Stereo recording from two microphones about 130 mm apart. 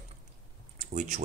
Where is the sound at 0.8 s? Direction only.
70° right (ahead or behind).